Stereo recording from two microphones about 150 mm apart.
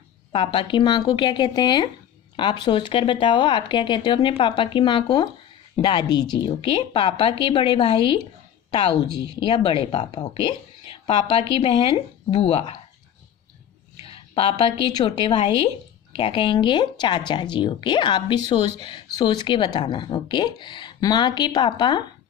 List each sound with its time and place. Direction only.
0.3 s a woman's voice: 35° left (ahead or behind)
8.6 s a sound: 35° left (ahead or behind)
9.4 s a woman's voice: 35° left (ahead or behind)
14.0 s a woman's voice: 40° left (ahead or behind)